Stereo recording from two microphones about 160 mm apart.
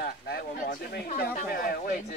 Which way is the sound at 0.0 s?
90° left.